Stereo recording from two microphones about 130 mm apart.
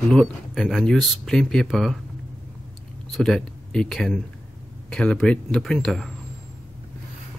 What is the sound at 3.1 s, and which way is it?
Speech, 5° left (ahead or behind).